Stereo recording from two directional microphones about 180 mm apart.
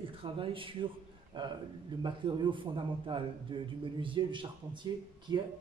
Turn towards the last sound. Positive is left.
turn(degrees=-25)  # may be behind; listen again after turning